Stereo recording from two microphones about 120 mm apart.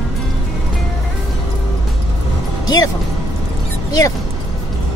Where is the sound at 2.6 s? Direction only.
30° left (ahead or behind).